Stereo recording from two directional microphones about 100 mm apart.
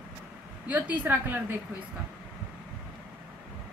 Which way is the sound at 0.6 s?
15° right (ahead or behind).